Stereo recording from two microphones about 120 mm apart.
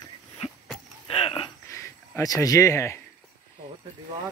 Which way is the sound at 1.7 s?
25° left (ahead or behind).